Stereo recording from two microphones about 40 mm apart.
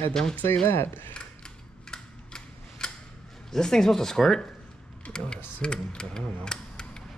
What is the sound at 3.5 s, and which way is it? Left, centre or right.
Speech, centre.